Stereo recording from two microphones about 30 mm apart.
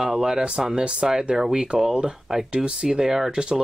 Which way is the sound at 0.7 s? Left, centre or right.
Right.